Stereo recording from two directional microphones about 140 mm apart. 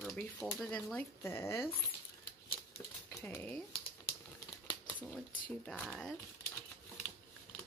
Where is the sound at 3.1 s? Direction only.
15° left (ahead or behind).